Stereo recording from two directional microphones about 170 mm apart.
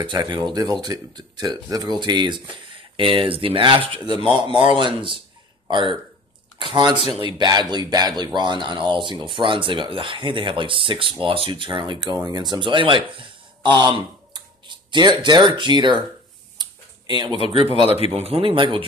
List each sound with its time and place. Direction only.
0.0 s speech: 25° right (ahead or behind)
7.0 s speech: 35° left (ahead or behind)
7.3 s speech: 25° right (ahead or behind)
16.5 s a sound: 25° right (ahead or behind)
18.1 s speech: 35° right (ahead or behind)